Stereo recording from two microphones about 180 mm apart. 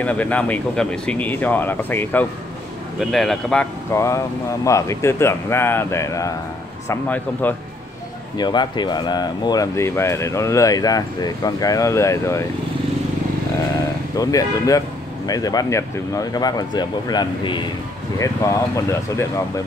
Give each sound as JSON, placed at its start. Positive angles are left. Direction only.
{"t": 0.0, "sound": "speech", "side_deg": 10}
{"t": 3.0, "sound": "speech", "side_deg": 0}
{"t": 3.9, "sound": "speech", "side_deg": 15}
{"t": 8.4, "sound": "speech", "side_deg": 25}
{"t": 14.1, "sound": "speech", "side_deg": 20}